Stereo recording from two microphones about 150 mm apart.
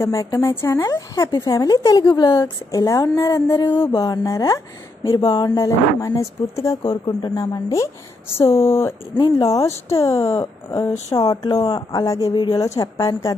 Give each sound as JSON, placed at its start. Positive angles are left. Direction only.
{"t": 0.0, "sound": "speech", "side_deg": 20}